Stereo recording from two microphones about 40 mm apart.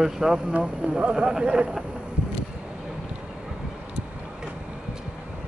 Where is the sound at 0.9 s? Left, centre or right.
Right.